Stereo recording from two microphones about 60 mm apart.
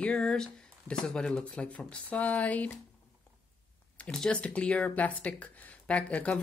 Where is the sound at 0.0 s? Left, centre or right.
Centre.